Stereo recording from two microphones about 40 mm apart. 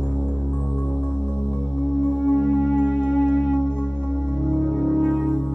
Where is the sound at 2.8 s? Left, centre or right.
Right.